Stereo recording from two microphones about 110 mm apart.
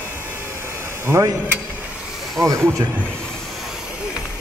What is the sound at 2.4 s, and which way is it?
Speech, centre (ahead or behind).